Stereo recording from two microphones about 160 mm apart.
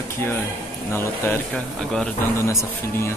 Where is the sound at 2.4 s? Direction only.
20° left (ahead or behind).